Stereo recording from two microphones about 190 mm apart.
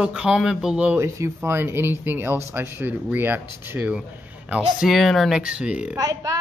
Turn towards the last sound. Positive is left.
turn(degrees=-20)  # may be behind; listen again after turning